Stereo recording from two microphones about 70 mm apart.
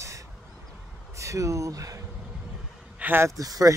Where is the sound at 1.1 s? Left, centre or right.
Right.